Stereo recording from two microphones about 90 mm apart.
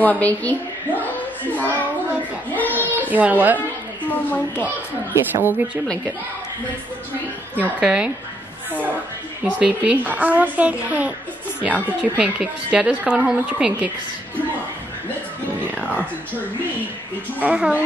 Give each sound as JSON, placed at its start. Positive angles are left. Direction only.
{"t": 0.0, "sound": "a child's voice", "side_deg": 15}
{"t": 2.5, "sound": "a sound", "side_deg": 20}
{"t": 3.1, "sound": "a woman's voice", "side_deg": -20}
{"t": 4.1, "sound": "a woman's voice", "side_deg": 20}
{"t": 5.1, "sound": "a woman's voice", "side_deg": -25}
{"t": 7.5, "sound": "a woman's voice", "side_deg": -15}
{"t": 9.6, "sound": "a woman's voice", "side_deg": -15}
{"t": 17.4, "sound": "a woman's voice", "side_deg": -15}